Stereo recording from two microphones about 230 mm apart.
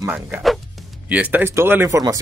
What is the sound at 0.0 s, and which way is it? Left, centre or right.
Speech, centre.